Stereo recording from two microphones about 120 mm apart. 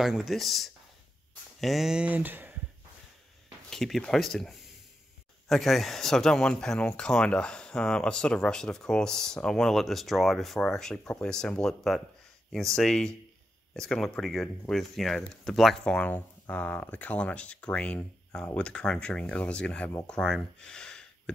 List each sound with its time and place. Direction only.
0.0 s speech: 5° right (ahead or behind)
3.7 s speech: 5° left (ahead or behind)